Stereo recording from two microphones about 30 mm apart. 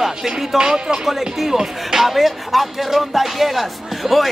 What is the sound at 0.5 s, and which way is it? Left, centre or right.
Speech, right.